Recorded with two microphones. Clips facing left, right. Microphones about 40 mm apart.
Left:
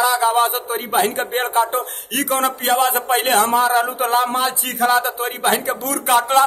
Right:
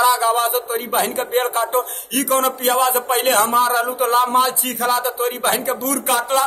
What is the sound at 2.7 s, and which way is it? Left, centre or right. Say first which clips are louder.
Speech: left 1 dB; left.